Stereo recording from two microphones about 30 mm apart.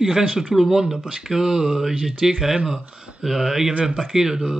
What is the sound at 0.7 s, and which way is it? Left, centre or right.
Speech, centre.